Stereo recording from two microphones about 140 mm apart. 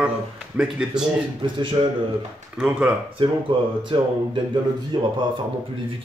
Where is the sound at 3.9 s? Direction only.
35° right (ahead or behind).